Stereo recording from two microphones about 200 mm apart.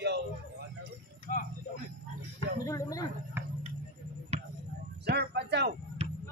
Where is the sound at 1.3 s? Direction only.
45° left (ahead or behind).